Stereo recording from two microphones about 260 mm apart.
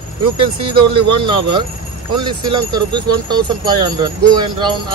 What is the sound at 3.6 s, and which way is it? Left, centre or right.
Speech, centre.